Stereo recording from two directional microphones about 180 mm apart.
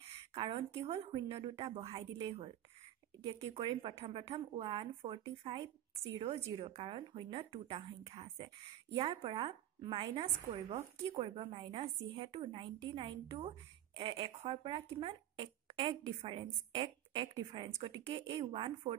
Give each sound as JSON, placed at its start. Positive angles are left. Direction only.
{"t": 0.3, "sound": "a woman's voice", "side_deg": -35}
{"t": 3.3, "sound": "a woman's voice", "side_deg": -30}
{"t": 11.2, "sound": "a woman's voice", "side_deg": -25}